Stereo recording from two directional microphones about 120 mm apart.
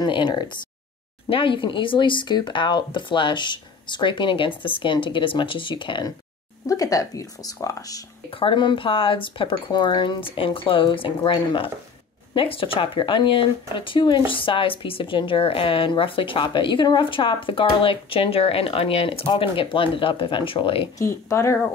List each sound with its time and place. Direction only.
0.0 s speech: 40° left (ahead or behind)
6.7 s speech: 30° left (ahead or behind)
8.3 s speech: 45° left (ahead or behind)
21.0 s speech: 25° left (ahead or behind)